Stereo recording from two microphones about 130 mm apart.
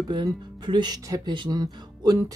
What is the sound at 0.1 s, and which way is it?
Speech, 35° right (ahead or behind).